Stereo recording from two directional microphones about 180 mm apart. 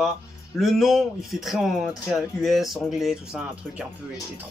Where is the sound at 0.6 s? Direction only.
Centre (ahead or behind).